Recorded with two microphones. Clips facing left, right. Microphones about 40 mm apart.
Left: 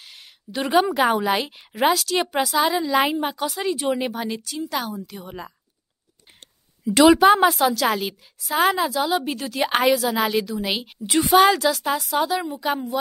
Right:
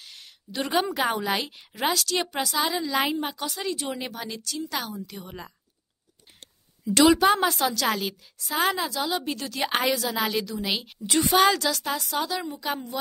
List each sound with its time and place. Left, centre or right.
0.0 s a woman's voice: centre
4.7 s a woman's voice: centre
6.9 s a woman's voice: centre